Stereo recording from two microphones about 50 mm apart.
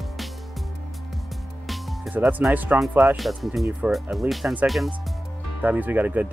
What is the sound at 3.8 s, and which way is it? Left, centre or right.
Speech, right.